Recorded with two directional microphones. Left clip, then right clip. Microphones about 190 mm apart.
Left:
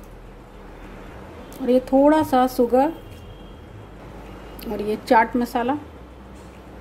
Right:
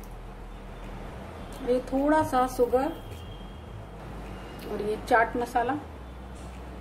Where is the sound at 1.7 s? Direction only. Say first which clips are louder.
Left 8 dB; 40° left (ahead or behind).